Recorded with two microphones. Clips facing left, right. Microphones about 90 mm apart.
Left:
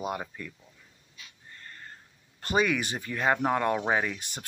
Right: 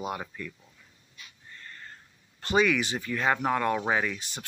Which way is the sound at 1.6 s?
35° left (ahead or behind).